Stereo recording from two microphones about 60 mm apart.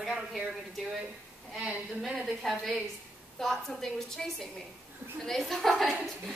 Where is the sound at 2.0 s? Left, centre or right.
Centre.